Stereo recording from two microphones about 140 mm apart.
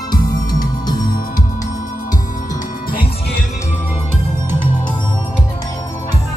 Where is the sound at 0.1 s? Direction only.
30° left (ahead or behind).